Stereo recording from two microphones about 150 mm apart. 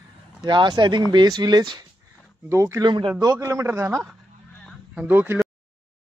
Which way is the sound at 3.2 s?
20° right (ahead or behind).